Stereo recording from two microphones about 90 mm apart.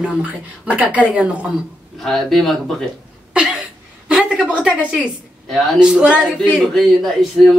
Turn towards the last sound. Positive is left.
turn(degrees=0)  # may be behind; listen again after turning